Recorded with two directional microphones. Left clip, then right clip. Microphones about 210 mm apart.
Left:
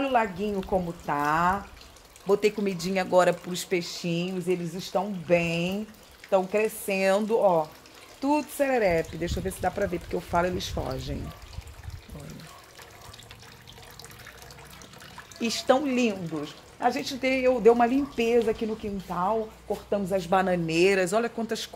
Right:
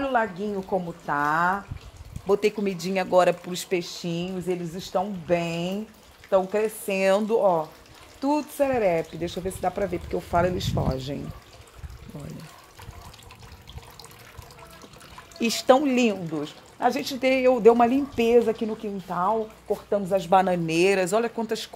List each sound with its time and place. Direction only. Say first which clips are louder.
0.0 s speech: even; 15° right (ahead or behind); by 11.1 s 35° right (ahead or behind)
15.4 s speech: right 4 dB; 45° right (ahead or behind); by 21.6 s 25° right (ahead or behind)